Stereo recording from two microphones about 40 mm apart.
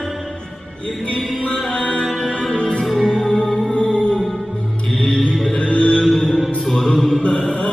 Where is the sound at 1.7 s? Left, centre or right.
Left.